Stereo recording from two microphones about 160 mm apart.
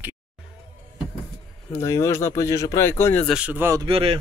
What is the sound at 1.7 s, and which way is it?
Speech, 20° left (ahead or behind).